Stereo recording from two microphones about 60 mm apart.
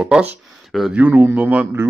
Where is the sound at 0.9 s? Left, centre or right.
Right.